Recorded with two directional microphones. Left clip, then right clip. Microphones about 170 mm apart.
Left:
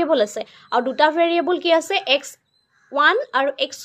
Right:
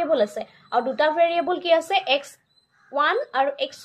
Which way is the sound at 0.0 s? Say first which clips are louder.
Left 3 dB; 50° left (ahead or behind).